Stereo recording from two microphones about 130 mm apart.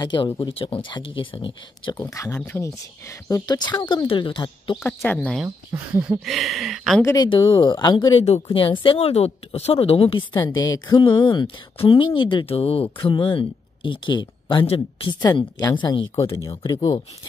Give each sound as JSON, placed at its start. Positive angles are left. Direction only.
{"t": 0.0, "sound": "speech", "side_deg": 35}
{"t": 2.0, "sound": "speech", "side_deg": 25}
{"t": 3.3, "sound": "speech", "side_deg": 30}
{"t": 4.8, "sound": "speech", "side_deg": 15}
{"t": 5.7, "sound": "speech", "side_deg": -20}
{"t": 6.2, "sound": "speech", "side_deg": 0}
{"t": 7.2, "sound": "speech", "side_deg": 35}
{"t": 8.2, "sound": "speech", "side_deg": 50}
{"t": 15.2, "sound": "speech", "side_deg": 30}
{"t": 16.2, "sound": "speech", "side_deg": 25}